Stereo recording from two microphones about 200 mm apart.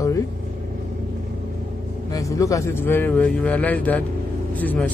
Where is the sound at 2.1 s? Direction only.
15° left (ahead or behind).